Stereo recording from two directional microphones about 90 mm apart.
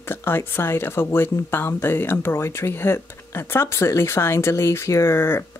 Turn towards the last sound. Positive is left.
turn(degrees=25)  # may be behind; listen again after turning